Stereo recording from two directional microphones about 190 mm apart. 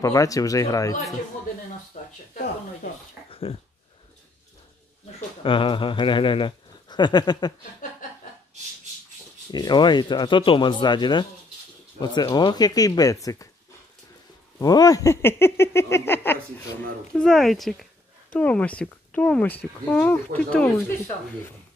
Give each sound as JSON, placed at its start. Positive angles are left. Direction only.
{"t": 0.0, "sound": "speech", "side_deg": 15}
{"t": 2.0, "sound": "speech", "side_deg": 40}
{"t": 2.3, "sound": "speech", "side_deg": 50}
{"t": 3.3, "sound": "dog", "side_deg": 30}
{"t": 5.4, "sound": "speech", "side_deg": 25}
{"t": 9.5, "sound": "speech", "side_deg": 20}
{"t": 14.6, "sound": "speech", "side_deg": 20}